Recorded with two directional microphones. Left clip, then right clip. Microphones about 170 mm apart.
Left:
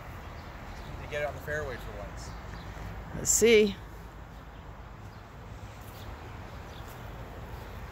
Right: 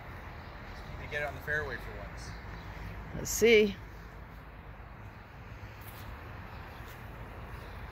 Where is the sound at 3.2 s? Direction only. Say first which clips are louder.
Left 2 dB; 5° left (ahead or behind).